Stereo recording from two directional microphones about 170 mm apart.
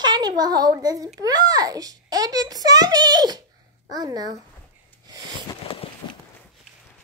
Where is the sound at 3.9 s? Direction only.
20° right (ahead or behind).